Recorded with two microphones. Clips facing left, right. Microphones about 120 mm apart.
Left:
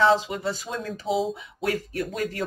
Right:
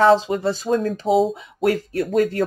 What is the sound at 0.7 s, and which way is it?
Speech, 45° right (ahead or behind).